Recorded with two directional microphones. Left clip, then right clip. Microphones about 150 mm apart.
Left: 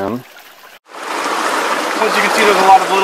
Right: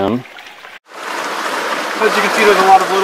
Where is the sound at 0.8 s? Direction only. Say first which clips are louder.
Left 2 dB; centre (ahead or behind).